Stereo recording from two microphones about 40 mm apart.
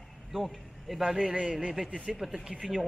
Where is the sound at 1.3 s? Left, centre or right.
Centre.